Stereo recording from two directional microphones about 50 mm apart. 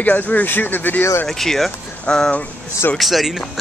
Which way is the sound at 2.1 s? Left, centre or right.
Left.